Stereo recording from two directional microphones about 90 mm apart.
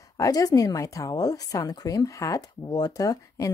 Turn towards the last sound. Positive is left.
turn(degrees=40)  # may be behind; listen again after turning